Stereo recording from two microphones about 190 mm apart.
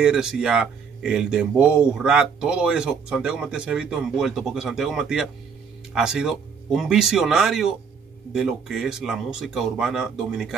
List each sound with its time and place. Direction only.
0.0 s speech: 5° right (ahead or behind)